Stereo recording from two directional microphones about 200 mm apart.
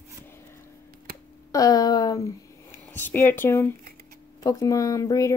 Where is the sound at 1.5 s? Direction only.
20° left (ahead or behind).